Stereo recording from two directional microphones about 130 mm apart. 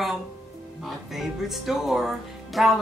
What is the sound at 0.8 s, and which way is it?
A woman's voice, centre (ahead or behind).